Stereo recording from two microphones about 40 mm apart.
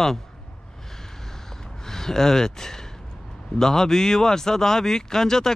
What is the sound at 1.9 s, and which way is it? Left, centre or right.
Speech, centre.